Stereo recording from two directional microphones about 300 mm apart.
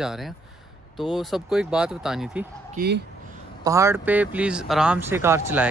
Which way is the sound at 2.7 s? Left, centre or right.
Right.